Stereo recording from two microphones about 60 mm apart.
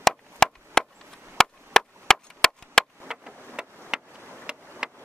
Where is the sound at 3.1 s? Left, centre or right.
Centre.